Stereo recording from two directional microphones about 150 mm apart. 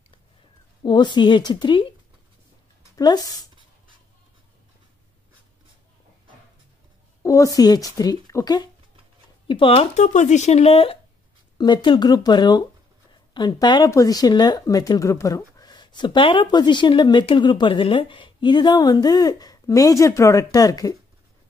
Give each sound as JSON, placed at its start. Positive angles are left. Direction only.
{"t": 0.8, "sound": "a woman's voice", "side_deg": 30}
{"t": 3.0, "sound": "speech", "side_deg": 30}
{"t": 7.2, "sound": "speech", "side_deg": 20}
{"t": 9.5, "sound": "speech", "side_deg": 35}